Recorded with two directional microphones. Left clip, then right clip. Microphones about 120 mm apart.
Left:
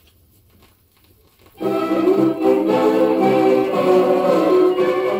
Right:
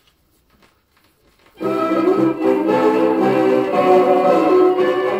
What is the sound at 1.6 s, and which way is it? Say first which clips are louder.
Music: right 1 dB; 30° left (ahead or behind).